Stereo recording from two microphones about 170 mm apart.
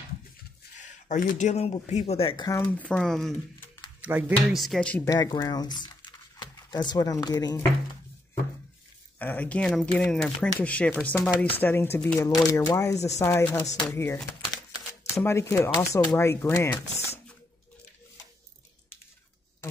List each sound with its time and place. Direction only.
0.7 s speech: 50° left (ahead or behind)
2.4 s speech: 20° left (ahead or behind); by 3.3 s centre (ahead or behind)
4.0 s speech: 10° right (ahead or behind)
4.6 s speech: centre (ahead or behind)
5.0 s speech: 20° left (ahead or behind)
9.2 s speech: 10° left (ahead or behind)
12.9 s speech: 40° left (ahead or behind)
13.2 s speech: 15° left (ahead or behind)